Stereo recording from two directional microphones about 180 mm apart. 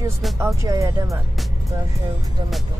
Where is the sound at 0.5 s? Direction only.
15° right (ahead or behind).